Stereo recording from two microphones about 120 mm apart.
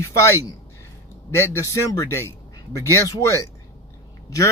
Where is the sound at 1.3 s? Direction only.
25° left (ahead or behind).